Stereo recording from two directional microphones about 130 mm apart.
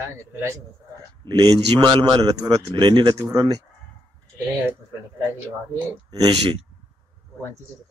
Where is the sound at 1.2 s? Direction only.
30° right (ahead or behind).